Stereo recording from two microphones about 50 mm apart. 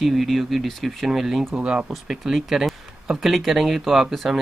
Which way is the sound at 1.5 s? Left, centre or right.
Centre.